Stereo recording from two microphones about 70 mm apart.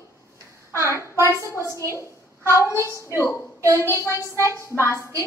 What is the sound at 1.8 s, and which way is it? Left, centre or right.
Speech, right.